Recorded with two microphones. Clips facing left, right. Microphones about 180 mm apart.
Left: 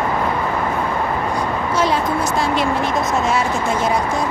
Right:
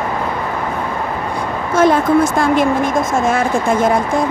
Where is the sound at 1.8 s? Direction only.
50° right (ahead or behind).